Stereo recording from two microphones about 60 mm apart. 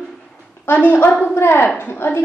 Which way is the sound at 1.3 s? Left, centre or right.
Left.